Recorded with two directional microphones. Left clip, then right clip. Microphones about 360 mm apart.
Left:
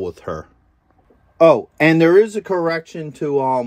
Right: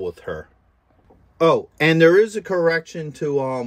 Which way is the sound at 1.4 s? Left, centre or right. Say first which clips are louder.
Left 5 dB; centre.